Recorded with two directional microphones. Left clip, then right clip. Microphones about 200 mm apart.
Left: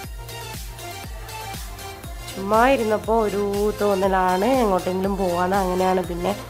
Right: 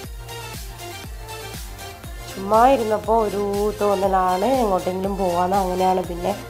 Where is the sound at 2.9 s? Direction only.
25° left (ahead or behind).